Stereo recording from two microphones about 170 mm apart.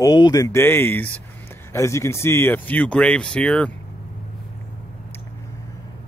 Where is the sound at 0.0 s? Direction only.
20° left (ahead or behind); by 3.7 s 5° left (ahead or behind).